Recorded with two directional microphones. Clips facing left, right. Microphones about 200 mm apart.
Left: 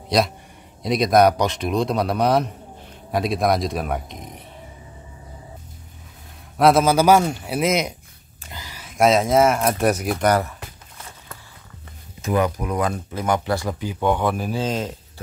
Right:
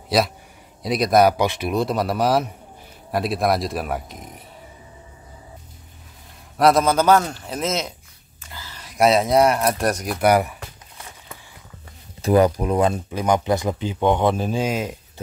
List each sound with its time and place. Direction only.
0.1 s speech: 5° right (ahead or behind)
6.5 s speech: centre (ahead or behind)
8.5 s a sound: 15° left (ahead or behind)
8.8 s speech: centre (ahead or behind)
10.1 s speech: 10° right (ahead or behind)
12.2 s speech: 35° right (ahead or behind)
14.6 s speech: 10° right (ahead or behind)